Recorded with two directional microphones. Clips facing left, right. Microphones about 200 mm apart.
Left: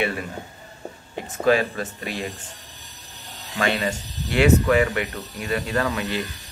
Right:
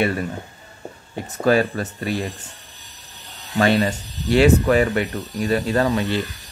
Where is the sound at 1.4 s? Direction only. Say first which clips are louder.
Right 2 dB; 40° right (ahead or behind).